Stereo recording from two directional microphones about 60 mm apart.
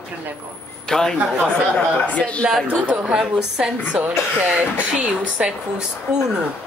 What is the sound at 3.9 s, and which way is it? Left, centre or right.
Speech, right.